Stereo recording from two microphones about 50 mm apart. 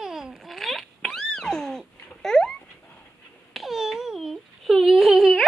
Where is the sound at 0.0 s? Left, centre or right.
Centre.